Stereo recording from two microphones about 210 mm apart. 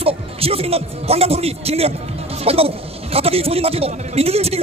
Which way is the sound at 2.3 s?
30° right (ahead or behind).